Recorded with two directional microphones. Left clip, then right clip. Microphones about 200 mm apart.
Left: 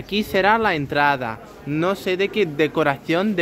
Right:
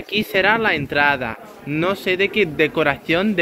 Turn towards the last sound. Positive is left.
turn(degrees=20)  # may be behind; listen again after turning